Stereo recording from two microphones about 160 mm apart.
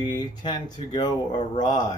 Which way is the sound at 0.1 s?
30° left (ahead or behind).